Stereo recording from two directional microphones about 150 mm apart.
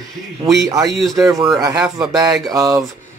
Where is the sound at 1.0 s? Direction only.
Centre (ahead or behind).